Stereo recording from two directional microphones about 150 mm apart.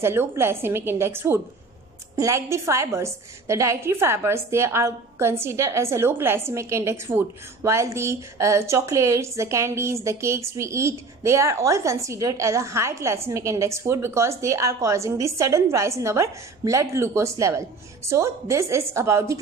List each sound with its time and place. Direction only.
0.0 s a woman's voice: 15° right (ahead or behind)